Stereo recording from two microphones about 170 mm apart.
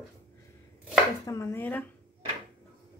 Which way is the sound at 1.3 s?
15° left (ahead or behind).